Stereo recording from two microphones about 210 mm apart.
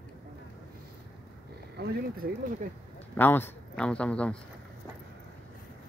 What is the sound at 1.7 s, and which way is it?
Speech, 50° right (ahead or behind).